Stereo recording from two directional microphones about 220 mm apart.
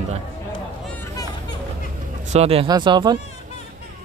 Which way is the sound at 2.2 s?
30° right (ahead or behind).